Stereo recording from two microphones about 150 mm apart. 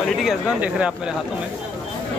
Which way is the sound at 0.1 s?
Centre (ahead or behind).